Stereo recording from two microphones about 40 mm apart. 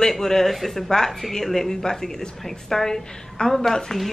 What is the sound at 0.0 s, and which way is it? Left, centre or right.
A woman's voice, centre.